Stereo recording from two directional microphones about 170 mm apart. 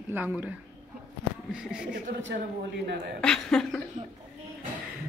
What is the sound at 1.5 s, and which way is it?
Speech, 5° right (ahead or behind).